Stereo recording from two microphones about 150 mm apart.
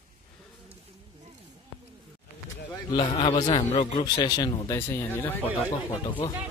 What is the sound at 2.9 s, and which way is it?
A man's voice, 35° left (ahead or behind).